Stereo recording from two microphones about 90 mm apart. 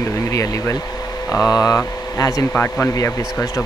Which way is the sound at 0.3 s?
35° left (ahead or behind).